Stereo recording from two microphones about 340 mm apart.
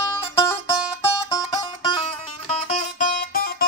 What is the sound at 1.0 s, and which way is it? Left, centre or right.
Music, centre.